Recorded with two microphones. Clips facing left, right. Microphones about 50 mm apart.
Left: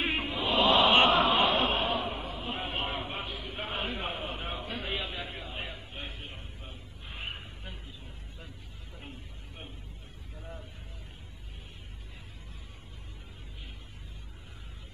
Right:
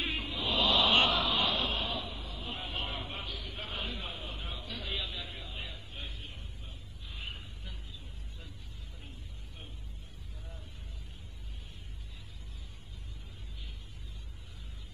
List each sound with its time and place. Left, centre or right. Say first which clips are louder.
0.0 s chant: left 5 dB; left